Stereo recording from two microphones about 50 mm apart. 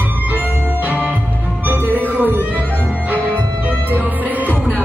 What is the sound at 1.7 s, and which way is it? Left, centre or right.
Music, right.